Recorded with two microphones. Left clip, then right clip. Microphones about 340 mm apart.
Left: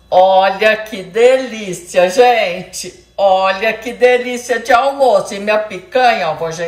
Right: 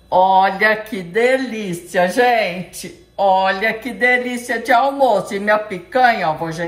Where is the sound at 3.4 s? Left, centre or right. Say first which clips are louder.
Left 3 dB; left.